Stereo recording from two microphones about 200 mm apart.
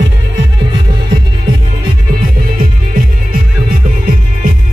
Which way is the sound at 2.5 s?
45° right (ahead or behind).